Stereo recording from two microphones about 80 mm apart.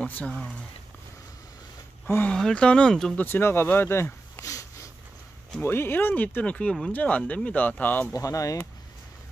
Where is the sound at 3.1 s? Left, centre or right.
Left.